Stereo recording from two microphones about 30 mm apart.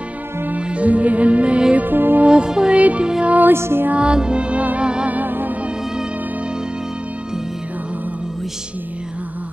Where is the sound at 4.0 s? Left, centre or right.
Right.